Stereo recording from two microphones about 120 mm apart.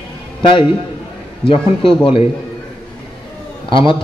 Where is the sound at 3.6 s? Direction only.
45° left (ahead or behind).